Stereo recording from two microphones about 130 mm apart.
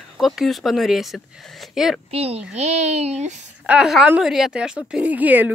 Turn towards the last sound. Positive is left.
turn(degrees=-10)  # may be behind; listen again after turning